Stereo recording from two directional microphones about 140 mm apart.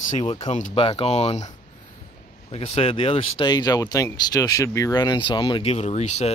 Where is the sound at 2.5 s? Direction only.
45° left (ahead or behind).